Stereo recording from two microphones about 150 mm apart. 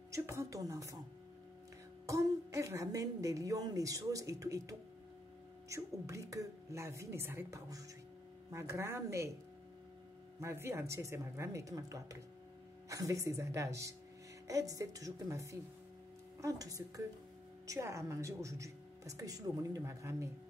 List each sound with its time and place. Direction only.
0.1 s a woman's voice: 20° right (ahead or behind)
2.0 s a woman's voice: 20° right (ahead or behind)
10.4 s a woman's voice: 15° right (ahead or behind)